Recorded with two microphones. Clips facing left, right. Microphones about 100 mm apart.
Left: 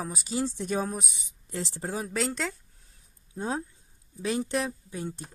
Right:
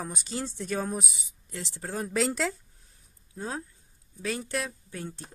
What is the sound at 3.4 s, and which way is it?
Speech, 25° left (ahead or behind).